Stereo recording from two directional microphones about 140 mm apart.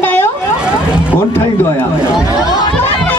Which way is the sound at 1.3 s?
15° left (ahead or behind).